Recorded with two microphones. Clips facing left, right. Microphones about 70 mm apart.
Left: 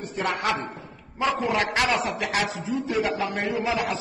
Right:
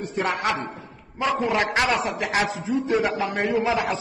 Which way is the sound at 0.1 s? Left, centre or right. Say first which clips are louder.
Right 1 dB; right.